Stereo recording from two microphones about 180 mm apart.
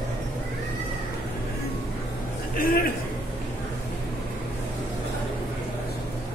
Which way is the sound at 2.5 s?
50° left (ahead or behind).